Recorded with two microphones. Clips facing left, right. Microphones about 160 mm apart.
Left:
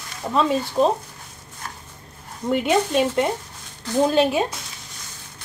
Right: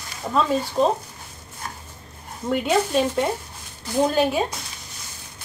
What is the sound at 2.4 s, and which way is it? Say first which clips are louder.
Speech: left 1 dB; centre (ahead or behind).